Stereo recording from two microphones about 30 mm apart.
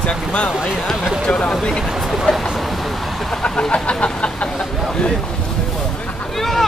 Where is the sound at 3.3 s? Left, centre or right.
Left.